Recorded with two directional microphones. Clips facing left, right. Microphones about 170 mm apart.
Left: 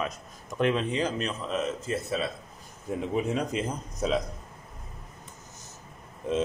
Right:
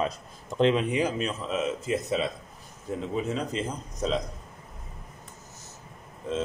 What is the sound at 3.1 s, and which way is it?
A man's voice, 15° left (ahead or behind).